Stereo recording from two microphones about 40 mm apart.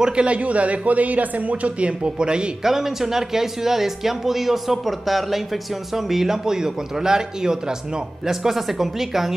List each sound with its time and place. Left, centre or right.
0.0 s a man's voice: right
2.6 s speech: centre
8.3 s speech: centre